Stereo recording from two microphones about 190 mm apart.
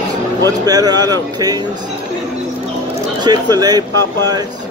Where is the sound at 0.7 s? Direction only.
20° right (ahead or behind).